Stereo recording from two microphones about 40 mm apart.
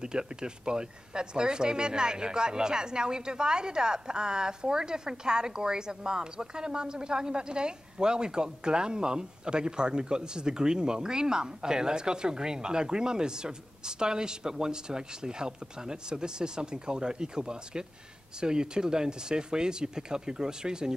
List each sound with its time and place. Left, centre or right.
0.0 s speech: centre